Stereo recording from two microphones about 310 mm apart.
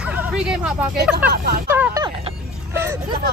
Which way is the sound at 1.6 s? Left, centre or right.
Centre.